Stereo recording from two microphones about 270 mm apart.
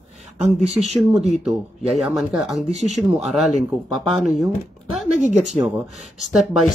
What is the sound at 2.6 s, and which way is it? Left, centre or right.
Speech, right.